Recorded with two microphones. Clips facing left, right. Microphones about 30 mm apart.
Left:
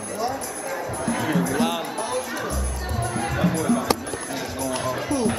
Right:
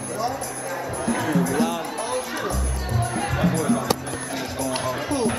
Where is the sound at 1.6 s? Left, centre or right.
Centre.